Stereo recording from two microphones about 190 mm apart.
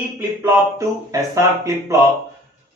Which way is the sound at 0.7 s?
15° right (ahead or behind).